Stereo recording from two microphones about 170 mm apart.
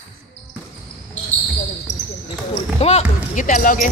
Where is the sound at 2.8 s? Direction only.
45° left (ahead or behind).